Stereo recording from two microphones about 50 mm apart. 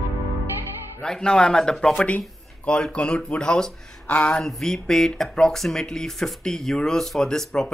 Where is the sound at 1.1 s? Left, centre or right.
Centre.